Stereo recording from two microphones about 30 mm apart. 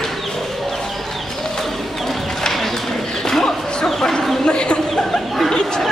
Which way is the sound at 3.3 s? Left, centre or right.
Centre.